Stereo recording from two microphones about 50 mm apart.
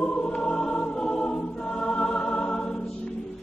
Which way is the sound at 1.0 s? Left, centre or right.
Centre.